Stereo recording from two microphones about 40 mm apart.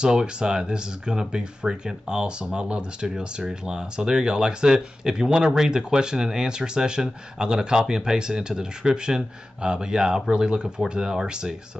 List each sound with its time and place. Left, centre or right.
0.0 s speech: centre